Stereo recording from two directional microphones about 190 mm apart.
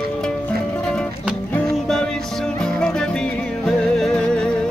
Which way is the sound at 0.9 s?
Centre (ahead or behind).